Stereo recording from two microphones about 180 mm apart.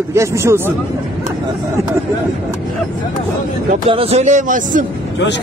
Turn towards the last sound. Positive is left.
turn(degrees=-45)  # may be behind; listen again after turning